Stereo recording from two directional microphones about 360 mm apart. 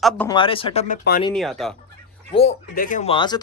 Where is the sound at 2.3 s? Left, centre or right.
Centre.